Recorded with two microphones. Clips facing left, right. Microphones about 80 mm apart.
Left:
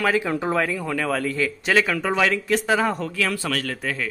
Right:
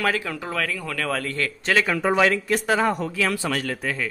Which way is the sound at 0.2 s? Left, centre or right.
Left.